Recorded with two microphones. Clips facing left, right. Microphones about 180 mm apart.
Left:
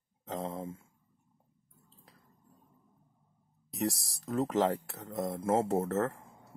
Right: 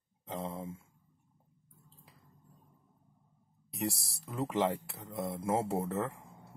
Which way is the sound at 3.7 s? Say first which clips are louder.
Left 3 dB; centre (ahead or behind).